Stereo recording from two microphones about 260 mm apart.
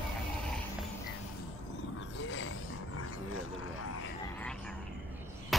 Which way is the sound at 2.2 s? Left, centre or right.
Left.